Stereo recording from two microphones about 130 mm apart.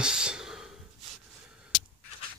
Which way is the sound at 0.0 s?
5° right (ahead or behind).